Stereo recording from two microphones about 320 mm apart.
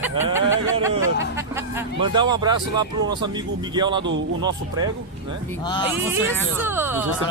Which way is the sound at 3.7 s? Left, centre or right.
Centre.